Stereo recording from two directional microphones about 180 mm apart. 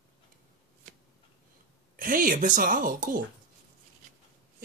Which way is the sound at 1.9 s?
50° right (ahead or behind).